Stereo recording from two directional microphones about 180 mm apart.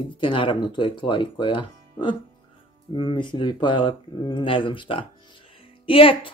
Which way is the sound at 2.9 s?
25° left (ahead or behind).